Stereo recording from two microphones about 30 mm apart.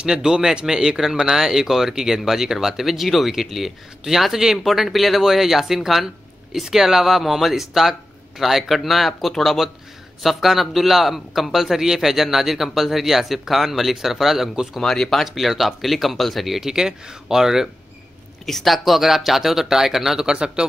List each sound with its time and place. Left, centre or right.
0.0 s a man's voice: right
4.6 s a man's voice: centre
14.8 s speech: centre
15.2 s speech: centre
16.5 s a man's voice: centre
18.4 s speech: centre
18.9 s a man's voice: centre
20.2 s speech: right